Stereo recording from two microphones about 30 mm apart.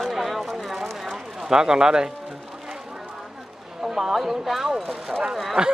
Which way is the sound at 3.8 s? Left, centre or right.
Centre.